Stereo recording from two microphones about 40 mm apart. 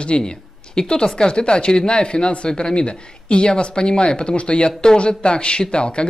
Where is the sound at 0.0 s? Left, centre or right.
Left.